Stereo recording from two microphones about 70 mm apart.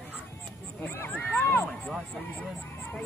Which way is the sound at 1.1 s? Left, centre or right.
Left.